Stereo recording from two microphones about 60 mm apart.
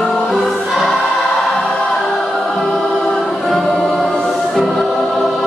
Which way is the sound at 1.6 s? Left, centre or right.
Centre.